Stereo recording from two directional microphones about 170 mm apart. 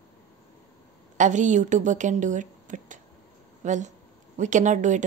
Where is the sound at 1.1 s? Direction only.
45° right (ahead or behind).